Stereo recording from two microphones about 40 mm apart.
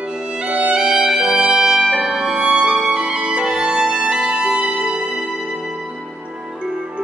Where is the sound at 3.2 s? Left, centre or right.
Right.